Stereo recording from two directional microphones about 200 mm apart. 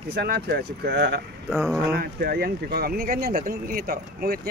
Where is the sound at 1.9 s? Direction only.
50° right (ahead or behind).